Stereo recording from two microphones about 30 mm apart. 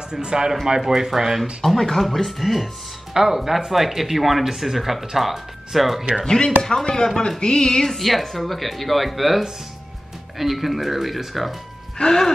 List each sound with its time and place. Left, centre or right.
0.1 s speech: right
0.7 s speech: centre
1.4 s speech: centre
6.2 s speech: left
7.2 s speech: left
7.8 s speech: centre
12.0 s speech: centre